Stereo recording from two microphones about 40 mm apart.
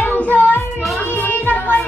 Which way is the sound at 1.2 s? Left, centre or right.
Left.